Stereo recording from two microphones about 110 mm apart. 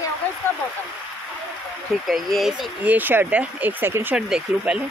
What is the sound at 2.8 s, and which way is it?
Speech, 15° right (ahead or behind).